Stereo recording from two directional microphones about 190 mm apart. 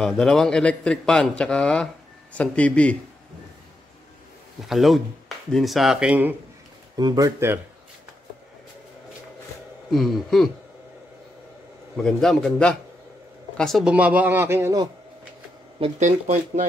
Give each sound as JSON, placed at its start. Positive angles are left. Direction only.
{"t": 0.0, "sound": "a man's voice", "side_deg": 5}
{"t": 4.6, "sound": "a man's voice", "side_deg": 0}
{"t": 7.0, "sound": "a man's voice", "side_deg": -20}
{"t": 9.8, "sound": "a man's voice", "side_deg": 0}
{"t": 12.0, "sound": "a man's voice", "side_deg": 5}
{"t": 15.8, "sound": "speech", "side_deg": -40}